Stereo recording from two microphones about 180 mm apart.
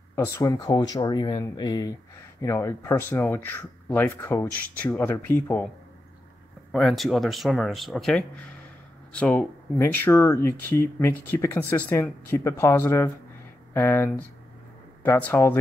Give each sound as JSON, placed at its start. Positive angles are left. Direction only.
{"t": 0.1, "sound": "speech", "side_deg": 15}
{"t": 6.7, "sound": "speech", "side_deg": 0}